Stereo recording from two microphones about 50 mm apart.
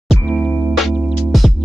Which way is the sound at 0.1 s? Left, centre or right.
Centre.